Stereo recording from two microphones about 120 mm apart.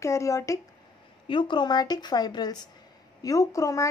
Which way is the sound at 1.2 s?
45° left (ahead or behind).